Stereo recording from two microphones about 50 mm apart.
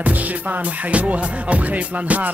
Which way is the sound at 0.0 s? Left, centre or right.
Right.